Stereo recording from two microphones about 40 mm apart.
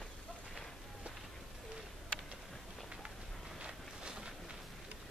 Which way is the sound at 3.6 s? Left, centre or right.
Right.